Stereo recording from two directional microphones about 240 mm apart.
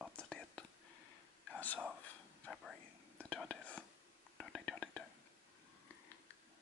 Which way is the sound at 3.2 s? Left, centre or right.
Centre.